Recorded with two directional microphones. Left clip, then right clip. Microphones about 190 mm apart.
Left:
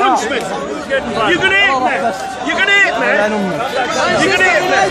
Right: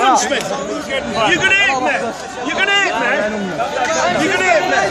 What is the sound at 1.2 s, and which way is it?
Speech, 45° right (ahead or behind).